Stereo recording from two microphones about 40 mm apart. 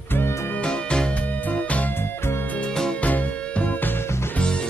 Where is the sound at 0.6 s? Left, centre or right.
Left.